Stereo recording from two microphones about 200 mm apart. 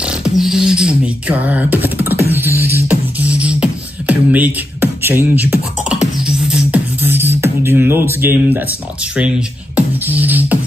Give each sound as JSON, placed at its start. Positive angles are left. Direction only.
{"t": 0.0, "sound": "speech", "side_deg": -5}
{"t": 2.3, "sound": "beatboxing", "side_deg": -10}